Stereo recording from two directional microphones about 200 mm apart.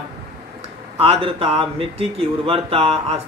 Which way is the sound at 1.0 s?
25° right (ahead or behind).